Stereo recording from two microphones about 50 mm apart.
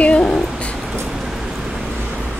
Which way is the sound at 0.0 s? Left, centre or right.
Left.